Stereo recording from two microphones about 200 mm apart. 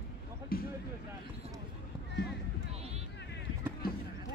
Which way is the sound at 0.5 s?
45° left (ahead or behind).